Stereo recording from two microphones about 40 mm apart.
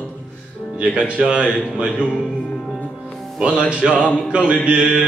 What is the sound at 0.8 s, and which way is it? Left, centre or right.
Music, right.